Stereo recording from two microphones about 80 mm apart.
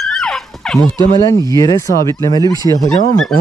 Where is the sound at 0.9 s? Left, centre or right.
Left.